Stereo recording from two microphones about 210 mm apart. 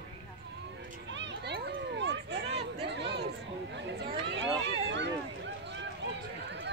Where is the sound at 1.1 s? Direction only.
60° right (ahead or behind).